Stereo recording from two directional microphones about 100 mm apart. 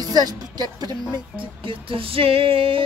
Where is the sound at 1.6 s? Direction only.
60° right (ahead or behind).